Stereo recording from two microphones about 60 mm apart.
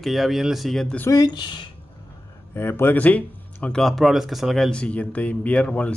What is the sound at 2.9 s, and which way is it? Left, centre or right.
Speech, left.